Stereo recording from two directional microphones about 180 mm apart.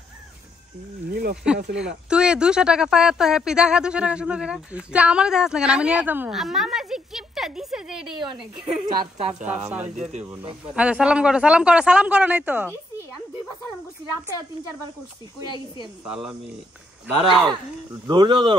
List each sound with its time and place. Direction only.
1.1 s speech: 60° right (ahead or behind)
1.8 s speech: 5° right (ahead or behind)
16.1 s speech: 5° right (ahead or behind)
17.2 s speech: 25° right (ahead or behind)